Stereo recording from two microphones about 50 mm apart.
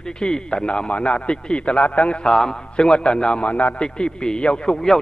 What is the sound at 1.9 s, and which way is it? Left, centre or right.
Speech, left.